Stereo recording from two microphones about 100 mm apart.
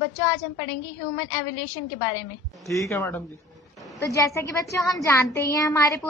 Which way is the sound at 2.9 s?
20° left (ahead or behind).